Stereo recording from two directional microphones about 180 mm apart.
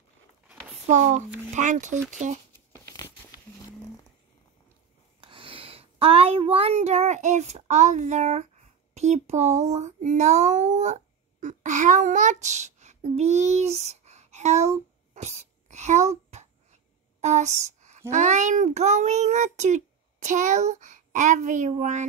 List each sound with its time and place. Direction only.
0.8 s a child's voice: 40° right (ahead or behind)
2.8 s crumpling: 20° left (ahead or behind)
5.2 s child singing: 30° right (ahead or behind)
17.2 s a sound: 40° right (ahead or behind)
18.1 s a child's voice: 40° right (ahead or behind)